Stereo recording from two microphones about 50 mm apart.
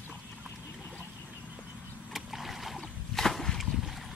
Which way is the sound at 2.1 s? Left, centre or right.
Centre.